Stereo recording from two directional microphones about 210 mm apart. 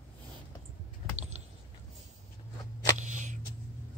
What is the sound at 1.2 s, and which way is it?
Creak, 30° right (ahead or behind).